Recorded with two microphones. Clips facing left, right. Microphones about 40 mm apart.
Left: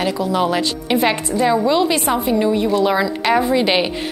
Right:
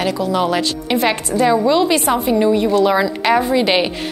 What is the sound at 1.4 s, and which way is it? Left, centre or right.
Speech, centre.